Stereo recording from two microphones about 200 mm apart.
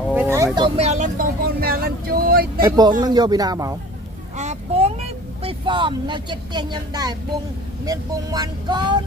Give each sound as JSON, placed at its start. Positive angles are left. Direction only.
{"t": 0.1, "sound": "vehicle", "side_deg": -10}
{"t": 0.6, "sound": "vehicle", "side_deg": -30}
{"t": 2.6, "sound": "speech", "side_deg": -20}
{"t": 4.4, "sound": "a sound", "side_deg": -35}
{"t": 5.4, "sound": "speech", "side_deg": -25}